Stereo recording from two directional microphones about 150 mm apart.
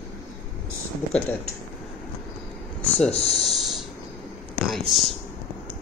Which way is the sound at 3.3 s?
Centre (ahead or behind).